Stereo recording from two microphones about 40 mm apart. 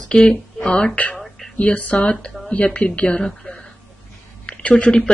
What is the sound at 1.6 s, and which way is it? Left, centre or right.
Speech, left.